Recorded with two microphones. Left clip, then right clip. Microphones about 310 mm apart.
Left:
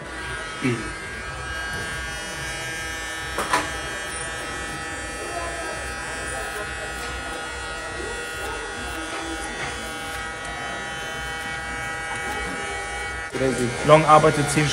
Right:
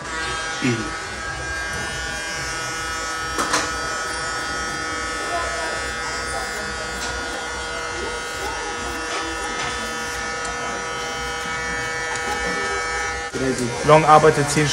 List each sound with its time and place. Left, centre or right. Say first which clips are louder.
13.8 s speech: right 2 dB; centre